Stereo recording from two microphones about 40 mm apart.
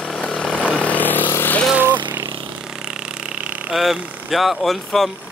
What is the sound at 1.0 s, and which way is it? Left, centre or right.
Vehicle, left.